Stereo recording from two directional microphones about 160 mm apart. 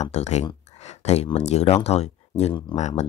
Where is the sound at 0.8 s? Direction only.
45° left (ahead or behind).